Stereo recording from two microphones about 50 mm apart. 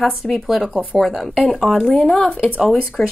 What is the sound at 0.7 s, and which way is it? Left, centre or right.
Speech, right.